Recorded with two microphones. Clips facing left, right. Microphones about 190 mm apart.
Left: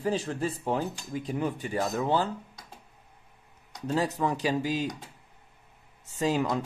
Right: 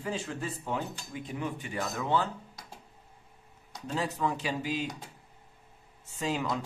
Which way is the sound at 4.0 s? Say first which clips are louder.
Left 3 dB; 40° left (ahead or behind).